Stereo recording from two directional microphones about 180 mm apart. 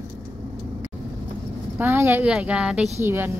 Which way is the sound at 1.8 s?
15° right (ahead or behind).